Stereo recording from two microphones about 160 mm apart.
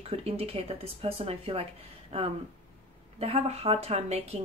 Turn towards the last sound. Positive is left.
turn(degrees=-40)  # may be behind; listen again after turning